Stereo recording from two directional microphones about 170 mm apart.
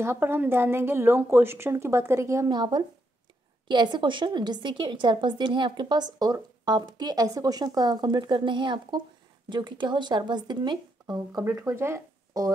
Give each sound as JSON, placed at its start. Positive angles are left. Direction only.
{"t": 0.0, "sound": "a woman's voice", "side_deg": -15}